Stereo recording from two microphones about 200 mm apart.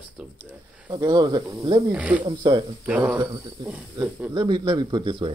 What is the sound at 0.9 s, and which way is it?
Speech, 20° right (ahead or behind).